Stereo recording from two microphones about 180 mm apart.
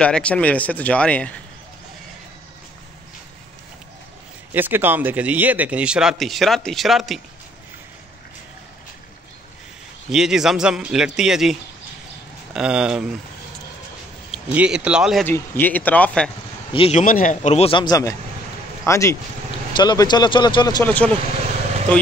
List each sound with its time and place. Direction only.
0.0 s speech: 5° left (ahead or behind)
4.6 s a man's voice: 10° right (ahead or behind)
10.1 s a man's voice: 5° right (ahead or behind)
12.5 s a man's voice: 5° right (ahead or behind)
14.3 s a man's voice: 5° right (ahead or behind)
15.2 s speech: 10° left (ahead or behind)
16.7 s a man's voice: 30° left (ahead or behind)
17.0 s a man's voice: 50° left (ahead or behind); by 20.8 s 25° left (ahead or behind)
20.8 s speech: 10° left (ahead or behind)